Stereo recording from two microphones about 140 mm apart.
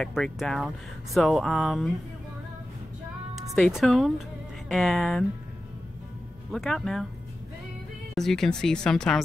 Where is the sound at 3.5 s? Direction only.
Centre (ahead or behind).